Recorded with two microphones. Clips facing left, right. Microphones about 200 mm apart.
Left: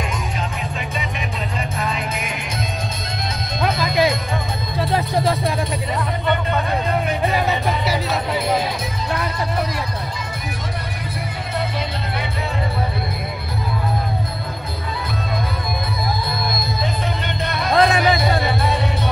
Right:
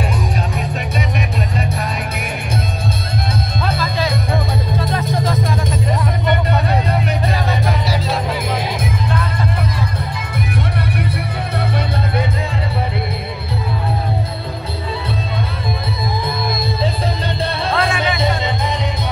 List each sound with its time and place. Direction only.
3.8 s music: 15° left (ahead or behind)
17.6 s music: 30° right (ahead or behind)